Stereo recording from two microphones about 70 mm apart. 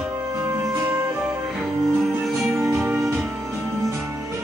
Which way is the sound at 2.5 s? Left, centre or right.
Right.